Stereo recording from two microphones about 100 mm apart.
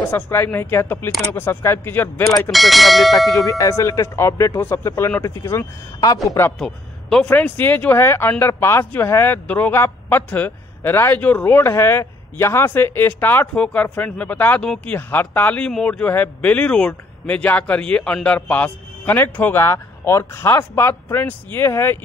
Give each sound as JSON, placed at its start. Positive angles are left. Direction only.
{"t": 0.1, "sound": "speech", "side_deg": 20}
{"t": 2.5, "sound": "speech", "side_deg": 0}
{"t": 3.4, "sound": "speech", "side_deg": 35}
{"t": 6.6, "sound": "a man's voice", "side_deg": 5}